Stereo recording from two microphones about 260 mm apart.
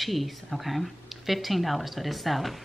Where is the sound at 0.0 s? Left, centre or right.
Centre.